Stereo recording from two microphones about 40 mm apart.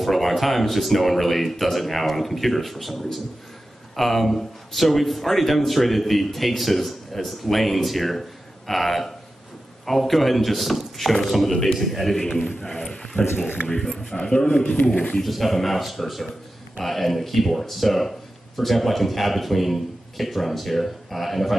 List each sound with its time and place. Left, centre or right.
0.0 s speech: centre
12.7 s a sound: centre
13.7 s a man's voice: centre
14.8 s a man's voice: left
15.2 s speech: centre